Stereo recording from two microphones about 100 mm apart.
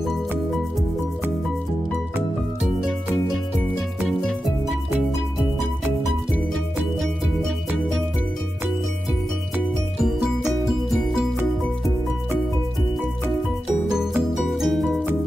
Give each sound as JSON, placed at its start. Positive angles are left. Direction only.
{"t": 13.8, "sound": "music", "side_deg": -5}